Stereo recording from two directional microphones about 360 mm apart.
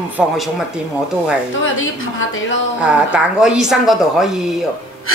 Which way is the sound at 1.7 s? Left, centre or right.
Left.